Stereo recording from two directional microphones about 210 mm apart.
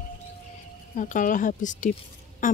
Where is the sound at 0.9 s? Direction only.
40° left (ahead or behind).